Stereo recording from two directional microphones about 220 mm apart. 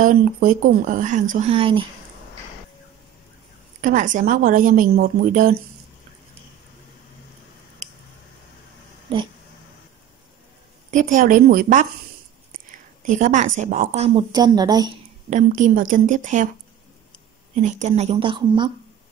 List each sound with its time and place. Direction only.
0.0 s speech: 40° right (ahead or behind)
3.8 s speech: 35° right (ahead or behind)
9.1 s speech: 25° right (ahead or behind)
10.9 s speech: 35° right (ahead or behind)
13.0 s speech: 35° right (ahead or behind); by 15.0 s 20° right (ahead or behind)
15.2 s speech: 35° right (ahead or behind)
17.6 s speech: 35° right (ahead or behind)